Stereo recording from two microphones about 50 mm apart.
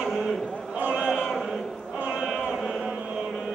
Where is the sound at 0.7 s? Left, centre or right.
Right.